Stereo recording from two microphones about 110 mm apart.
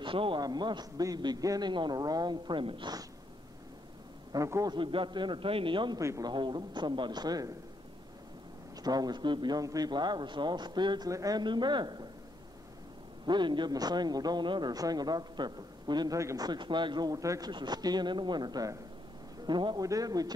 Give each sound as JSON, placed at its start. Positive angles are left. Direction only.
{"t": 0.0, "sound": "a man's voice", "side_deg": -50}
{"t": 0.4, "sound": "a man's voice", "side_deg": -40}
{"t": 4.3, "sound": "a man's voice", "side_deg": -30}
{"t": 4.7, "sound": "a man's voice", "side_deg": -45}
{"t": 5.9, "sound": "a man's voice", "side_deg": -30}
{"t": 6.3, "sound": "a man's voice", "side_deg": -45}
{"t": 8.8, "sound": "a man's voice", "side_deg": -35}
{"t": 11.1, "sound": "a man's voice", "side_deg": -30}
{"t": 13.2, "sound": "a man's voice", "side_deg": -45}
{"t": 16.2, "sound": "a man's voice", "side_deg": -25}
{"t": 16.4, "sound": "a man's voice", "side_deg": -45}